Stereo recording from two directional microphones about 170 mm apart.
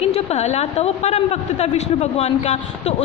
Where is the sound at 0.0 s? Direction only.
40° left (ahead or behind).